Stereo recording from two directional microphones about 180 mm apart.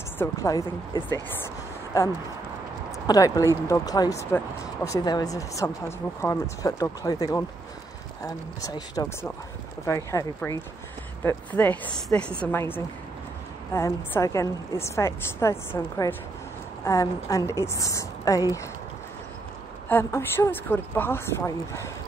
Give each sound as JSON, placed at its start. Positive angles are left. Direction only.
{"t": 0.2, "sound": "speech", "side_deg": 20}
{"t": 19.9, "sound": "speech", "side_deg": 15}